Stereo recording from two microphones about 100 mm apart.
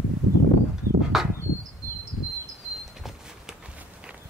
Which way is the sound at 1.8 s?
25° left (ahead or behind).